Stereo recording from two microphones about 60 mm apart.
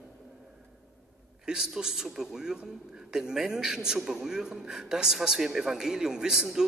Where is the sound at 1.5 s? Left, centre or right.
Centre.